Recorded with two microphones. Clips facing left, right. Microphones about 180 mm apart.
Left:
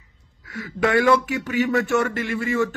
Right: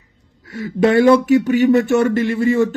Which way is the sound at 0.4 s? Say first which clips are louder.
Right 7 dB; 30° right (ahead or behind).